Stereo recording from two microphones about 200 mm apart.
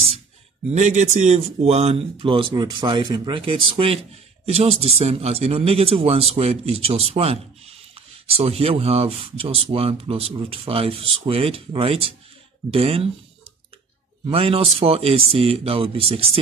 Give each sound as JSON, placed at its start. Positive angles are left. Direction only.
{"t": 0.7, "sound": "speech", "side_deg": -35}